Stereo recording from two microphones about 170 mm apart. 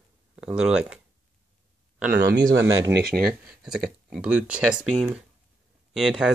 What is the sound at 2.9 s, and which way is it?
Speech, 65° right (ahead or behind).